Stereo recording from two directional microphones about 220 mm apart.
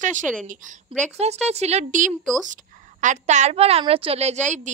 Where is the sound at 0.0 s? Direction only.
35° right (ahead or behind).